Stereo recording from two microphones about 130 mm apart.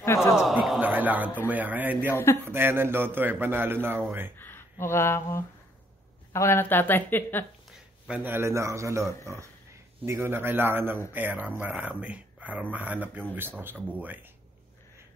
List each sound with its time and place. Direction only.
0.0 s a sound: 20° left (ahead or behind)
0.3 s a sound: centre (ahead or behind)
0.7 s music: 15° right (ahead or behind)
1.5 s speech: 10° right (ahead or behind)
2.1 s a man's voice: 20° left (ahead or behind)
2.4 s speech: 15° right (ahead or behind)
4.4 s speech: 15° left (ahead or behind)
8.1 s a man's voice: 15° right (ahead or behind)